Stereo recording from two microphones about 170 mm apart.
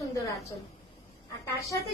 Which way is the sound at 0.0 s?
20° left (ahead or behind).